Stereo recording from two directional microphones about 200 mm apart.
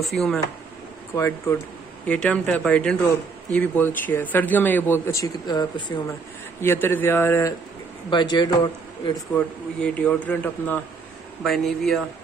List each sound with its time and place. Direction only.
0.0 s speech: centre (ahead or behind)
1.1 s a man's voice: 10° left (ahead or behind)
6.6 s a man's voice: 10° left (ahead or behind)
9.3 s a man's voice: 5° left (ahead or behind)